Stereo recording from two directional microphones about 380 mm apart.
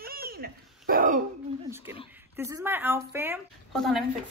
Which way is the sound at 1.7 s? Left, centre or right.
Centre.